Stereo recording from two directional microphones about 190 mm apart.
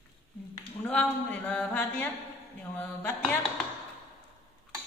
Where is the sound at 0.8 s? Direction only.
10° left (ahead or behind).